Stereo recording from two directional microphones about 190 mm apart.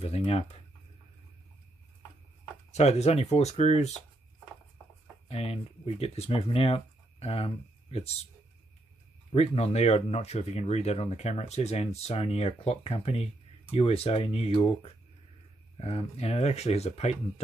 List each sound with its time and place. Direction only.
0.0 s speech: 30° left (ahead or behind)
2.7 s speech: 35° left (ahead or behind)
5.3 s speech: 35° left (ahead or behind)
9.3 s speech: 35° left (ahead or behind)